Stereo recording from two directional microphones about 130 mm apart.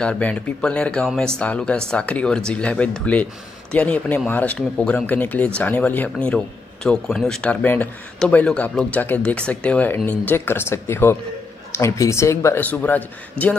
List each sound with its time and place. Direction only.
0.0 s speech: 10° left (ahead or behind)